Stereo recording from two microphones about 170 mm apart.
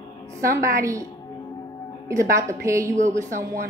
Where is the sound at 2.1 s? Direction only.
15° right (ahead or behind).